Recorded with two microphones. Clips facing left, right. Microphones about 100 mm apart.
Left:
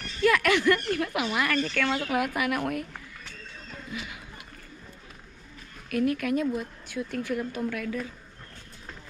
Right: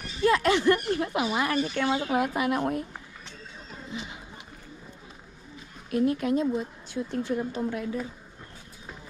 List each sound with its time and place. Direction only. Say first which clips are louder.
0.2 s a sound: even; 25° right (ahead or behind)
0.7 s speech: right 1 dB; 20° right (ahead or behind)
1.5 s speech: right 1 dB; 15° right (ahead or behind)
1.8 s speech: right 2 dB; 25° right (ahead or behind)
3.7 s a sound: even; 30° right (ahead or behind)
5.9 s speech: right 1 dB; 25° right (ahead or behind)